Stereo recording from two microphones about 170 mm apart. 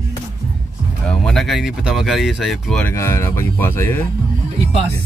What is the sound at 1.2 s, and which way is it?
Speech, centre (ahead or behind).